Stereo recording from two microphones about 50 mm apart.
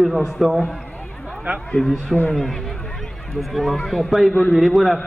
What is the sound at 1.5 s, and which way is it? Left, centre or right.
Speech, right.